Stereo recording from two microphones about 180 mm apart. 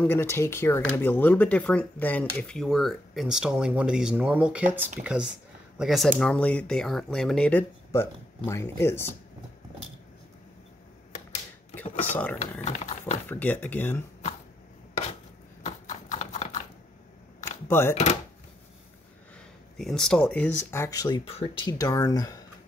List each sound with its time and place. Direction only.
0.0 s speech: 10° left (ahead or behind)
12.1 s speech: 10° left (ahead or behind)
12.6 s a sound: 40° left (ahead or behind)
13.3 s speech: 10° left (ahead or behind)
15.6 s horse: 40° left (ahead or behind)
17.6 s speech: 15° left (ahead or behind)
19.8 s speech: 5° left (ahead or behind); by 22.4 s 20° left (ahead or behind)